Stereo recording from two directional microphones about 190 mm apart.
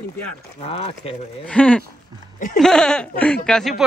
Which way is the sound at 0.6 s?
30° left (ahead or behind).